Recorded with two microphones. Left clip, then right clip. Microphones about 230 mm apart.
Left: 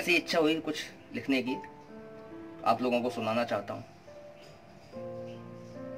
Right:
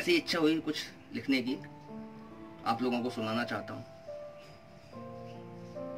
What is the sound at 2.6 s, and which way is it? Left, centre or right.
A man's voice, centre.